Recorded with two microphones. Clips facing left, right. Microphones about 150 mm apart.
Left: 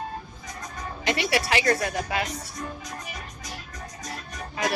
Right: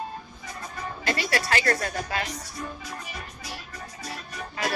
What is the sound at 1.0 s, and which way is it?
Speech, 20° left (ahead or behind).